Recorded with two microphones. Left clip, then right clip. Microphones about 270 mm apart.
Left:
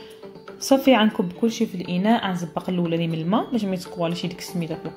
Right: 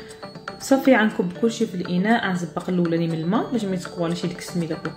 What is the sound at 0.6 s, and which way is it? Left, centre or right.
A woman's voice, centre.